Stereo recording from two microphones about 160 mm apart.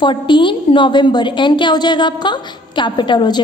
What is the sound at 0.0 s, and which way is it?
A woman's voice, 30° left (ahead or behind).